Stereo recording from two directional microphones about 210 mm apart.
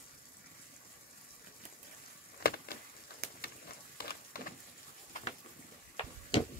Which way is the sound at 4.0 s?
45° left (ahead or behind).